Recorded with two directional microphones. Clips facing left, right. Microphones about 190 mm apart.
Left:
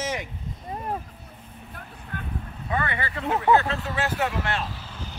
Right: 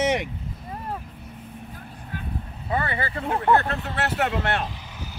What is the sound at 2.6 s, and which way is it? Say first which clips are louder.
Speech: right 2 dB; 35° right (ahead or behind).